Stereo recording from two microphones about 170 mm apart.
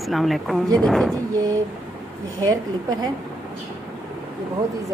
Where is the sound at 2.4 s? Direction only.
25° right (ahead or behind).